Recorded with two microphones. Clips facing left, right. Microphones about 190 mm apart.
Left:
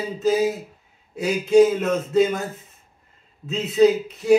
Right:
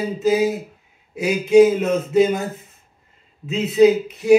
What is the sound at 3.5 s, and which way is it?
Speech, 15° right (ahead or behind).